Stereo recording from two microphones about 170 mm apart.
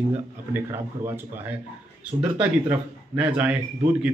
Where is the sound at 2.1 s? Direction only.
30° right (ahead or behind).